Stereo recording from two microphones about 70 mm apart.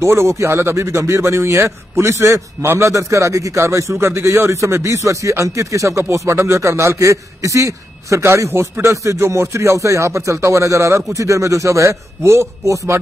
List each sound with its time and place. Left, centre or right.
0.0 s speech: right